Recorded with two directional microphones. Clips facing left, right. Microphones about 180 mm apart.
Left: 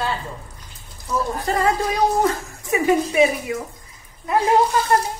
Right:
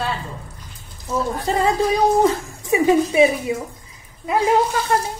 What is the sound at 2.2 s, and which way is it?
Speech, 20° right (ahead or behind).